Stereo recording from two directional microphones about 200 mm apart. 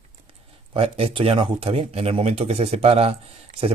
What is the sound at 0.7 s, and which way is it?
Speech, 30° right (ahead or behind).